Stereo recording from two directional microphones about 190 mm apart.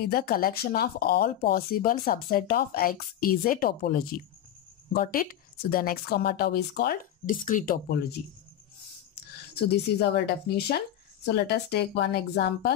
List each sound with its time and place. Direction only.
0.0 s speech: 55° left (ahead or behind)
9.1 s a woman's voice: 60° left (ahead or behind)